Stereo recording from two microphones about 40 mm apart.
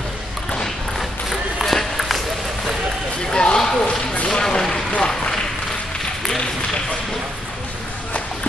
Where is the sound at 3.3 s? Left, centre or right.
Centre.